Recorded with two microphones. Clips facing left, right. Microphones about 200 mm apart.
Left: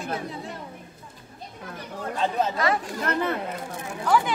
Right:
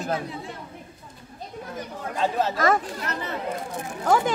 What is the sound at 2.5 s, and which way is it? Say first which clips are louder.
Speech: right 3 dB; 45° right (ahead or behind).